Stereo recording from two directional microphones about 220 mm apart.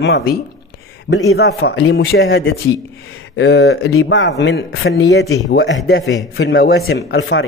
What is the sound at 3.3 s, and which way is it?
Speech, 50° left (ahead or behind).